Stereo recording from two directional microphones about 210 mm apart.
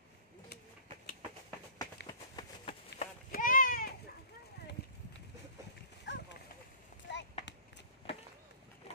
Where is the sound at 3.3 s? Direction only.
40° left (ahead or behind).